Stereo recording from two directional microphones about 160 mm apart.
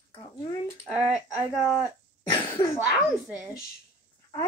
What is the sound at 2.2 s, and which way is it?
Cough, 30° left (ahead or behind).